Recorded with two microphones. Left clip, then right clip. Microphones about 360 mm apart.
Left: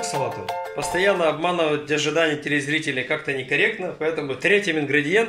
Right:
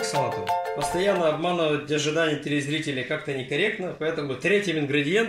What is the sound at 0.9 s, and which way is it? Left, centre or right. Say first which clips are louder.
Speech: left 4 dB; left.